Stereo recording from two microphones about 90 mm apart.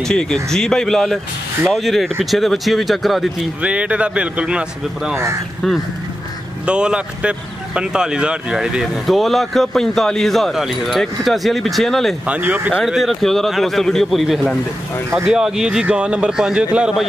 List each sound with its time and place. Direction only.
0.1 s speech: 10° left (ahead or behind)
3.6 s a man's voice: 15° right (ahead or behind)
5.1 s speech: 35° right (ahead or behind)
6.6 s speech: 10° right (ahead or behind)
12.3 s a man's voice: 20° right (ahead or behind)
12.8 s a man's voice: centre (ahead or behind)